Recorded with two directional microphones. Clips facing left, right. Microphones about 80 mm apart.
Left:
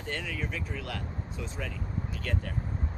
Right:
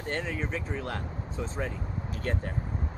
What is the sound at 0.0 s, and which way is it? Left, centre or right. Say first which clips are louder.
Speech: right 3 dB; right.